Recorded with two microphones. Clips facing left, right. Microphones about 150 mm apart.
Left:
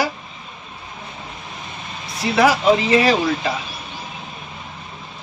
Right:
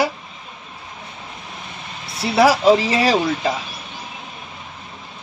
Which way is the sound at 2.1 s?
30° right (ahead or behind).